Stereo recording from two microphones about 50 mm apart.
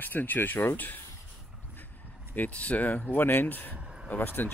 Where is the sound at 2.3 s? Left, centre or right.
Left.